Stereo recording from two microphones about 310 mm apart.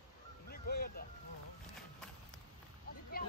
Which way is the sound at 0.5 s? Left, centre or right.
Left.